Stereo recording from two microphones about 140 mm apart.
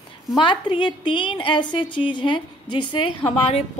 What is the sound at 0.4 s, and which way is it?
A woman's voice, 35° left (ahead or behind).